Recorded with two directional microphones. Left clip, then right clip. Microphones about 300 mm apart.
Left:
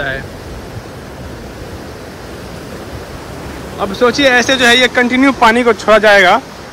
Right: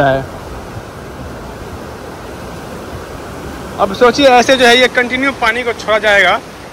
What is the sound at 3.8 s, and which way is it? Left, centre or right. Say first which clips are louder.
Speech: right 2 dB; centre.